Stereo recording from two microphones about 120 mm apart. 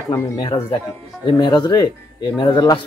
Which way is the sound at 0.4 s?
40° left (ahead or behind).